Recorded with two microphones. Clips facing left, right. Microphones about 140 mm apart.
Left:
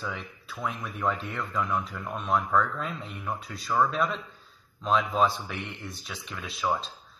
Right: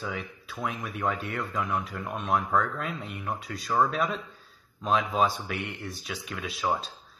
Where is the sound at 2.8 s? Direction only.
Centre (ahead or behind).